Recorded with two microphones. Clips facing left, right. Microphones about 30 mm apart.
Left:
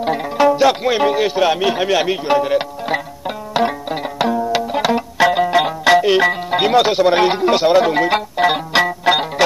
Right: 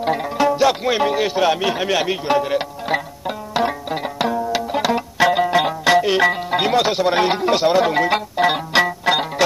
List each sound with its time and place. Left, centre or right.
0.0 s music: centre